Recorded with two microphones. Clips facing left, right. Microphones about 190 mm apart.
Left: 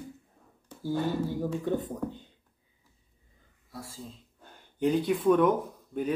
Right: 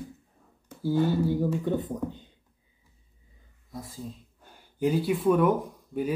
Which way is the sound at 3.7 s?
15° right (ahead or behind).